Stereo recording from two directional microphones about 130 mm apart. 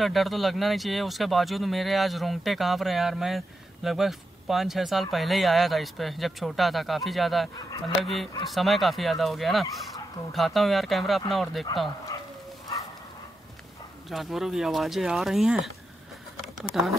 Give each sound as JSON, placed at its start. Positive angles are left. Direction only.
{"t": 0.0, "sound": "speech", "side_deg": 0}
{"t": 14.0, "sound": "speech", "side_deg": 0}
{"t": 16.8, "sound": "speech", "side_deg": 0}